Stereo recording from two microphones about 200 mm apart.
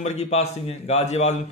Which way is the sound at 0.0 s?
35° left (ahead or behind).